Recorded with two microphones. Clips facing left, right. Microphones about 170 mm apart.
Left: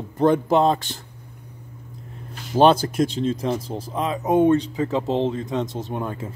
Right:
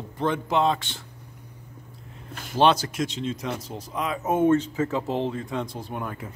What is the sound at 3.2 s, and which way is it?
Speech, 30° left (ahead or behind).